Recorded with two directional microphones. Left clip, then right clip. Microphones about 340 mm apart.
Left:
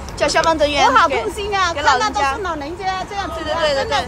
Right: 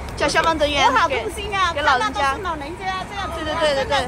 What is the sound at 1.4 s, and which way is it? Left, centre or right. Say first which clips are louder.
Speech: left 1 dB; left.